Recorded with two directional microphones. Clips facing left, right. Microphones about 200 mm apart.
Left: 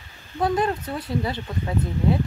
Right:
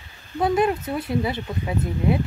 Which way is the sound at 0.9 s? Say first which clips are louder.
Right 2 dB; 20° right (ahead or behind).